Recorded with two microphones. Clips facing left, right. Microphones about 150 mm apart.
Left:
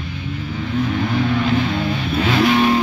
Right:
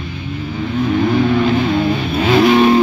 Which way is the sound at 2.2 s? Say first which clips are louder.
Right 5 dB; 20° right (ahead or behind).